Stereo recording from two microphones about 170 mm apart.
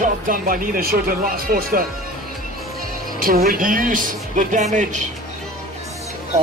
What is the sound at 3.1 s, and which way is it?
Speech, 60° right (ahead or behind).